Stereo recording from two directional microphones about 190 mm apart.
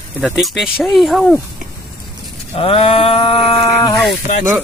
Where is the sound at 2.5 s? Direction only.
30° left (ahead or behind).